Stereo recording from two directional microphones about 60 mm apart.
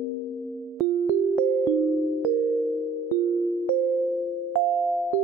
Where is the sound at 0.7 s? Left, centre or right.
Centre.